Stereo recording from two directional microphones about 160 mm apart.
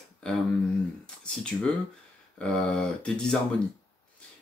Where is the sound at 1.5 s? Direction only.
5° left (ahead or behind).